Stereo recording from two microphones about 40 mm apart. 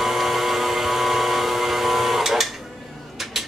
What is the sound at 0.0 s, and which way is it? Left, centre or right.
Vehicle, centre.